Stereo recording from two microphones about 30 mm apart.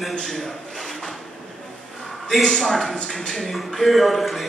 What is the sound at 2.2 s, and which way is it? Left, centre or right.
A man's voice, centre.